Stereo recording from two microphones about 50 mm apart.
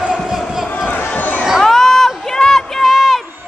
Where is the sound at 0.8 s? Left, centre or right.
Left.